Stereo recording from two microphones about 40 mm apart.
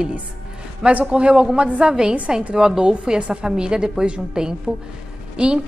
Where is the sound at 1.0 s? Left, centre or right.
Right.